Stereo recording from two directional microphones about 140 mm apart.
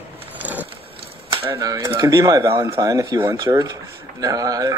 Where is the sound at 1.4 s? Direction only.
20° right (ahead or behind).